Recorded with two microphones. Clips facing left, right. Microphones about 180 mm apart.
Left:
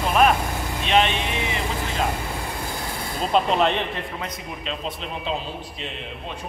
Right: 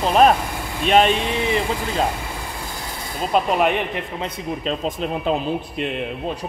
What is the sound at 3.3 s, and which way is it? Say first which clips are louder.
Speech: right 2 dB; 10° right (ahead or behind).